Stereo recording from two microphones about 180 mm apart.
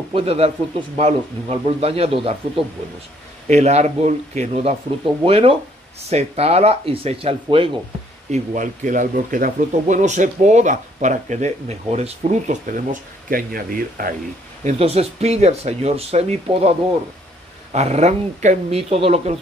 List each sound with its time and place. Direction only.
0.1 s speech: 30° right (ahead or behind)
8.3 s speech: 45° right (ahead or behind)
13.3 s speech: 55° right (ahead or behind)
14.6 s speech: 40° right (ahead or behind)
17.7 s speech: 35° right (ahead or behind)